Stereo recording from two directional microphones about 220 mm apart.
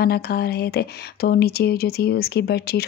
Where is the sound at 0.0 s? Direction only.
45° left (ahead or behind).